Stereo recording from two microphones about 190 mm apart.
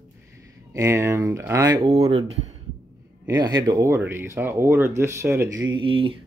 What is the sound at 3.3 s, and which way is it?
Speech, 20° right (ahead or behind).